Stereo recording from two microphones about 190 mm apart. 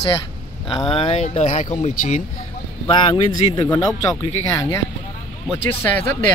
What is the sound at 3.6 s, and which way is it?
Speech, 10° left (ahead or behind).